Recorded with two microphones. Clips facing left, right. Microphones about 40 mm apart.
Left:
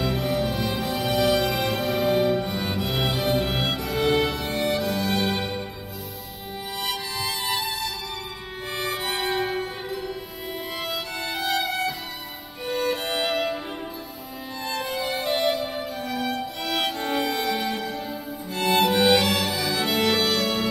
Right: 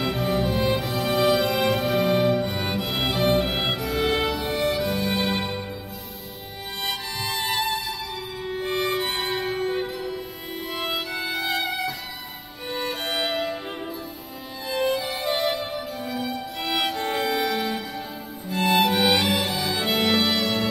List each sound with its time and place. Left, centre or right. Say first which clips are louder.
0.0 s music: right 1 dB; centre
6.8 s music: even; centre
11.4 s music: left 3 dB; centre
12.6 s music: left 3 dB; centre
14.7 s music: right 4 dB; centre
15.7 s music: left 1 dB; centre